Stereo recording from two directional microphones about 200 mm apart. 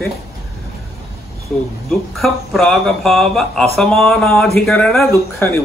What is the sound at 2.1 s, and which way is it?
Speech, centre (ahead or behind).